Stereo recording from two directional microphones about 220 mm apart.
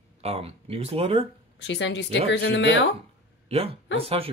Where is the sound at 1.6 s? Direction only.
55° left (ahead or behind).